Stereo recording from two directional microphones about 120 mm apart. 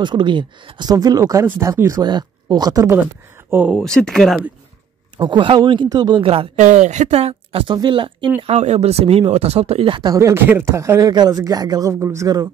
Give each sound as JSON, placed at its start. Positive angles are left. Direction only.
{"t": 0.0, "sound": "speech", "side_deg": -40}
{"t": 3.4, "sound": "speech", "side_deg": -15}
{"t": 3.7, "sound": "speech", "side_deg": 5}
{"t": 5.2, "sound": "speech", "side_deg": -40}
{"t": 6.2, "sound": "speech", "side_deg": -50}
{"t": 6.5, "sound": "speech", "side_deg": -80}
{"t": 7.6, "sound": "speech", "side_deg": -40}
{"t": 8.4, "sound": "speech", "side_deg": -65}
{"t": 10.1, "sound": "speech", "side_deg": -20}